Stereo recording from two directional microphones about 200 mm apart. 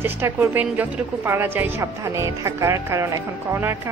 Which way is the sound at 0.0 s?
10° right (ahead or behind).